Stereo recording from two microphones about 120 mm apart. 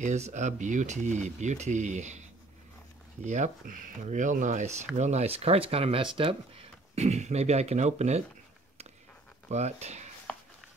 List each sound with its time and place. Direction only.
0.0 s speech: 80° right
3.3 s speech: 85° right; by 6.3 s 50° right (ahead or behind)
7.0 s speech: 70° right (ahead or behind)
9.5 s speech: 70° right (ahead or behind)